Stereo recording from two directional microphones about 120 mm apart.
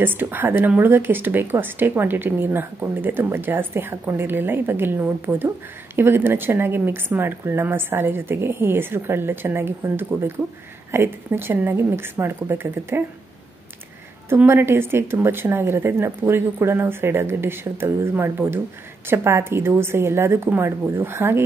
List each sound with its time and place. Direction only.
0.0 s speech: 15° right (ahead or behind)
14.3 s speech: 20° right (ahead or behind)